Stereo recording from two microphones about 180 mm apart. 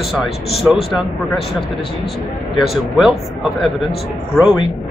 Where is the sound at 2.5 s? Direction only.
Centre (ahead or behind).